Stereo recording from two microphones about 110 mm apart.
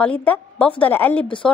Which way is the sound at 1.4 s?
Centre (ahead or behind).